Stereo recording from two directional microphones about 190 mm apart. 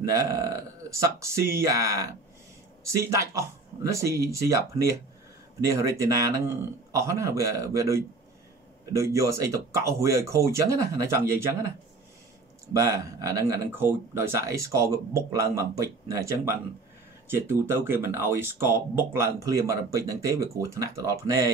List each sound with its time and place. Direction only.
0.1 s speech: 15° right (ahead or behind)
12.7 s speech: 15° right (ahead or behind)